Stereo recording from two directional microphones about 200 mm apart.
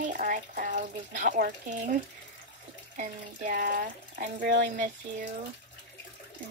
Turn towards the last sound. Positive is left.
turn(degrees=-40)  # may be behind; listen again after turning